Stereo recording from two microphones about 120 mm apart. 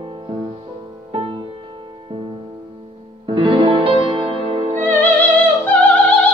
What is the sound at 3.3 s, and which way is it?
Music, 45° right (ahead or behind).